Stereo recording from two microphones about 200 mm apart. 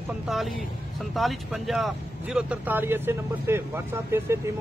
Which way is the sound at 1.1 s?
Centre (ahead or behind).